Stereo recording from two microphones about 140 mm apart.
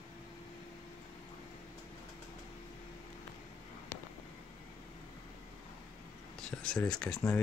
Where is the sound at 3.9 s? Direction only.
15° left (ahead or behind).